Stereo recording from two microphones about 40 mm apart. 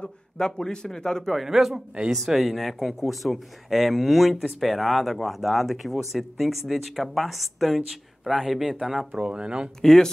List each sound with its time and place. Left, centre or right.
0.4 s speech: centre
1.3 s speech: centre
9.2 s speech: right
9.8 s speech: centre